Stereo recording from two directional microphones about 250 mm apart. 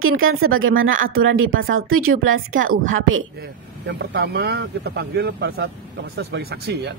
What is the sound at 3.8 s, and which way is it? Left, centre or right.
A woman's voice, right.